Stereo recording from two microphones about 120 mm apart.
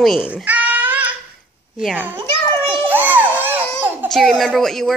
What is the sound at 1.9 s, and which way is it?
Speech, 15° right (ahead or behind).